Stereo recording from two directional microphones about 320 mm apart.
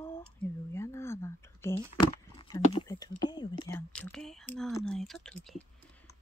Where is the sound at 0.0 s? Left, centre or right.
Centre.